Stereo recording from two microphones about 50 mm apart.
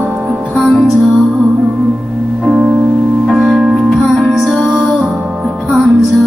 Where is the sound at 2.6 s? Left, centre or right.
Right.